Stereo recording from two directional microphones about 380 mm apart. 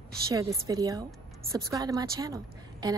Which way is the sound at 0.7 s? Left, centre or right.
Centre.